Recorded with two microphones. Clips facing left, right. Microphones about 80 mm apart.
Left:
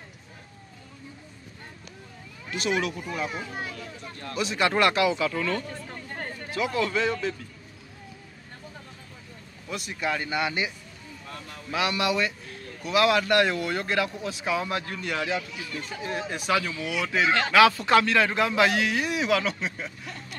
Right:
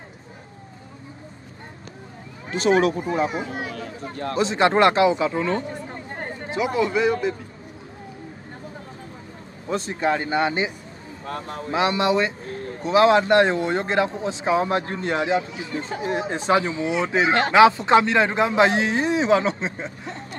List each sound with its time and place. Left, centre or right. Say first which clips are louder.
2.5 s speech: right 9 dB; right
3.7 s speech: right 7 dB; right; by 7.3 s centre
9.7 s a man's voice: right 7 dB; right
11.2 s speech: right 11 dB; right
11.7 s speech: right 6 dB; right